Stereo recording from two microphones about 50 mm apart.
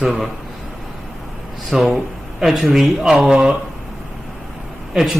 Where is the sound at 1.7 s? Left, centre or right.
Centre.